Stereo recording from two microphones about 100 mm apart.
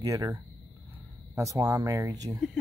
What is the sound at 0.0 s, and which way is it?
Speech, 35° right (ahead or behind).